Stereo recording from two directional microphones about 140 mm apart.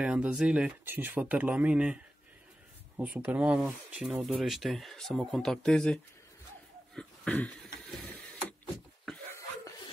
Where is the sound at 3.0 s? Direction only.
10° right (ahead or behind); by 5.9 s 5° left (ahead or behind).